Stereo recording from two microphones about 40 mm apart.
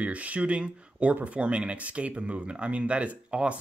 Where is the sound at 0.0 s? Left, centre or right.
Right.